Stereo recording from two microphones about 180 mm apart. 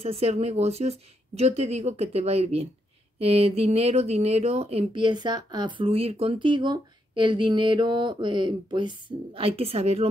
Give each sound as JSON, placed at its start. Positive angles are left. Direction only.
{"t": 0.0, "sound": "speech", "side_deg": -35}